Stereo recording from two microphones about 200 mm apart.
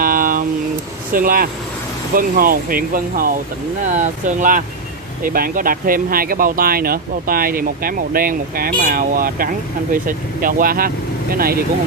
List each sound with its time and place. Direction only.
0.0 s vehicle: 45° right (ahead or behind)
1.1 s speech: 45° right (ahead or behind)